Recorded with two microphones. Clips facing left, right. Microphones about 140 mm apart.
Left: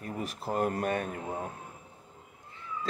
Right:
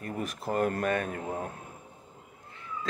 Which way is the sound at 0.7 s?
20° left (ahead or behind).